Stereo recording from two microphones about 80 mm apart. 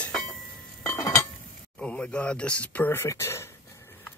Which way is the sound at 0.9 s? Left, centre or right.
Left.